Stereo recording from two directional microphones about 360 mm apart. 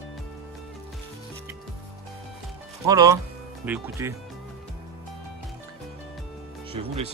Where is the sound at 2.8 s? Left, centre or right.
Centre.